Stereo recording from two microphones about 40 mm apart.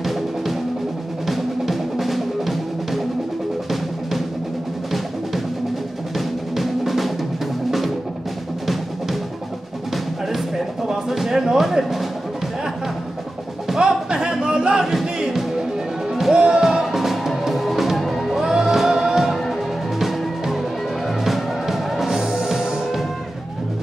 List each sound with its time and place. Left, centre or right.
0.0 s music: centre
6.1 s drum: centre
10.3 s music: centre
13.7 s music: centre
16.3 s music: right
16.8 s music: centre
18.4 s music: centre